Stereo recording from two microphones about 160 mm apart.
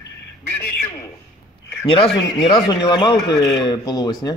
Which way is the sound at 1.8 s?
35° left (ahead or behind).